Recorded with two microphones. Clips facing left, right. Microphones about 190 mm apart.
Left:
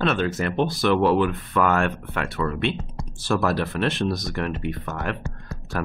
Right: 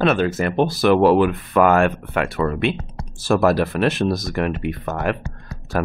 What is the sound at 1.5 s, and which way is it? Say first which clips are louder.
Speech: right 6 dB; 65° right (ahead or behind).